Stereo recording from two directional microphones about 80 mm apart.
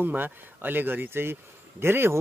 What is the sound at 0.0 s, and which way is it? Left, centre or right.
Speech, right.